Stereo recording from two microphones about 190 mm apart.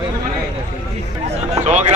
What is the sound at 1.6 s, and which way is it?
Speech, 40° right (ahead or behind).